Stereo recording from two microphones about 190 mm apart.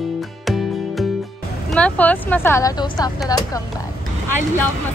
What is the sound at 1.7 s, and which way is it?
A woman's voice, 5° left (ahead or behind).